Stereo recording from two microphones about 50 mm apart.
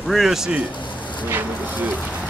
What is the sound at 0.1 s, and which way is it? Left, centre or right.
Speech, centre.